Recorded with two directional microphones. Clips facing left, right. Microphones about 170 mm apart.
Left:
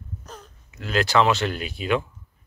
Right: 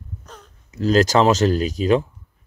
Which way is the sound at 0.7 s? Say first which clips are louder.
Right 9 dB; 40° right (ahead or behind).